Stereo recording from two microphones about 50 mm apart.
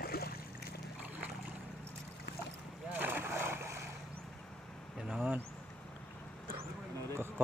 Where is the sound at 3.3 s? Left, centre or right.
Right.